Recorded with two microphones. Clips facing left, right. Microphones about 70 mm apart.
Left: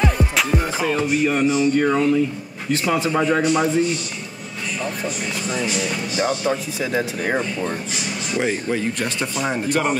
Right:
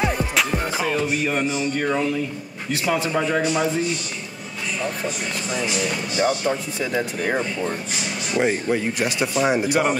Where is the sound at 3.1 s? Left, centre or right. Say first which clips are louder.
Left 3 dB; centre.